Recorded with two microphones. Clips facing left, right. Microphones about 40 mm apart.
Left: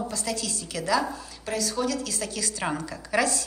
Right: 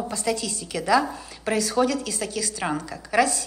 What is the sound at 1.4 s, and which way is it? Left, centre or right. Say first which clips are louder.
Speech: right 6 dB; right.